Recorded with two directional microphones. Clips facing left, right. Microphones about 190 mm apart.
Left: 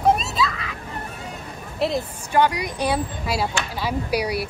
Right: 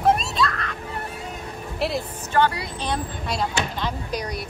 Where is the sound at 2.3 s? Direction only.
15° left (ahead or behind).